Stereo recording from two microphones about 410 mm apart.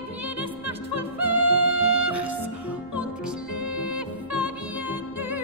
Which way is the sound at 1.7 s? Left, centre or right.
Right.